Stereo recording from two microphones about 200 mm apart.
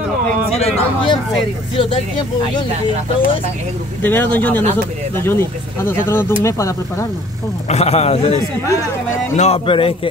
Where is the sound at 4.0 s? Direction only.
10° left (ahead or behind).